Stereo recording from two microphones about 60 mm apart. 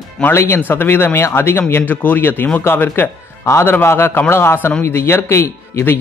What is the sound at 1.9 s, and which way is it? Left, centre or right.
Speech, left.